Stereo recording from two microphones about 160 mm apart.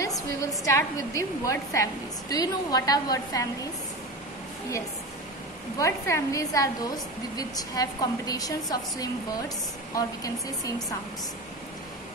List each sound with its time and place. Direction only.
0.0 s a sound: 20° left (ahead or behind)
0.7 s a woman's voice: 20° left (ahead or behind)
5.8 s a woman's voice: 20° left (ahead or behind)